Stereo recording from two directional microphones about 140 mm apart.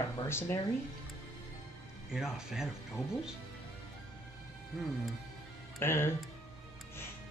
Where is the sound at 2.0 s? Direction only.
5° right (ahead or behind).